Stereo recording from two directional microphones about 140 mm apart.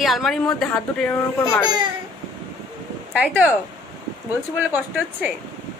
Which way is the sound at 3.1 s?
10° right (ahead or behind).